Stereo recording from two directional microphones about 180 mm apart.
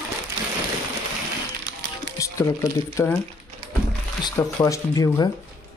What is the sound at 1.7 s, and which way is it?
Music, 70° right (ahead or behind).